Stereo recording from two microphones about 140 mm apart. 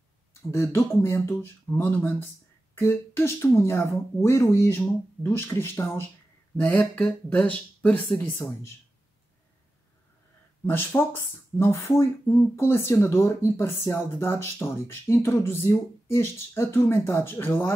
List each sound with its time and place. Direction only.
0.3 s speech: 20° left (ahead or behind)
10.7 s speech: 15° left (ahead or behind)